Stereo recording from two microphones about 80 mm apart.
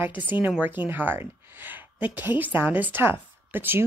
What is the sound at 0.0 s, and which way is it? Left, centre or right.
A woman's voice, right.